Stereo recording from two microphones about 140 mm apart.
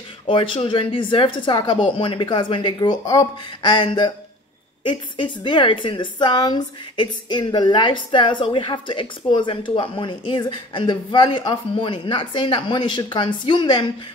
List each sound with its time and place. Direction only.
0.3 s a woman's voice: 40° left (ahead or behind)